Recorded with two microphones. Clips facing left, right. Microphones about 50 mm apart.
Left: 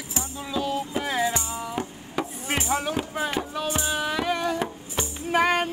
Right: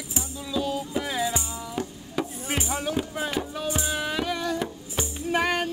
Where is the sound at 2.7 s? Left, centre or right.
Centre.